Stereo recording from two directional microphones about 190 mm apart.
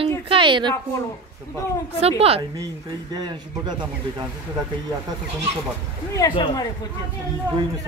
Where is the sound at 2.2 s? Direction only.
30° right (ahead or behind).